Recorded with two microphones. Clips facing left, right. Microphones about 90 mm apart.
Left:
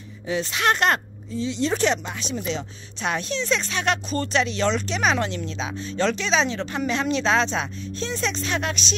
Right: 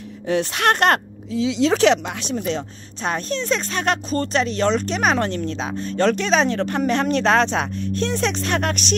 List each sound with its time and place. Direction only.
0.3 s a woman's voice: 60° right (ahead or behind)
2.3 s speech: 45° right (ahead or behind)